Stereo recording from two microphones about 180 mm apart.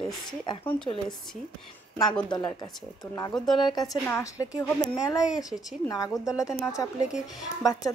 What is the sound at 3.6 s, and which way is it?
A woman's voice, 20° left (ahead or behind).